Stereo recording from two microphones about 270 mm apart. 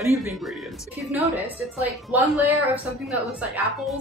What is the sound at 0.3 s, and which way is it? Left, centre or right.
A woman's voice, centre.